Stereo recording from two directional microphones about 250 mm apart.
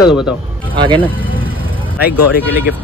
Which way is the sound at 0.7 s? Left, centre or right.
Centre.